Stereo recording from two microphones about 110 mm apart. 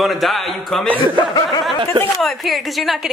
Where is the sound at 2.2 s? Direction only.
Centre (ahead or behind).